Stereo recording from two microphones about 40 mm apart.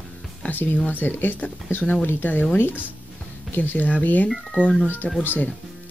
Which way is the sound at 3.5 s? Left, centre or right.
Left.